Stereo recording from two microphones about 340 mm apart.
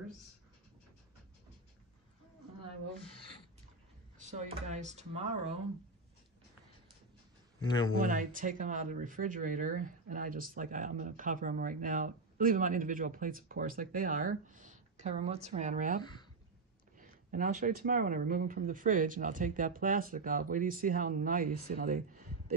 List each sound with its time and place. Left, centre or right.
4.2 s speech: centre
7.6 s speech: centre
8.0 s speech: right
16.0 s speech: centre
17.0 s speech: right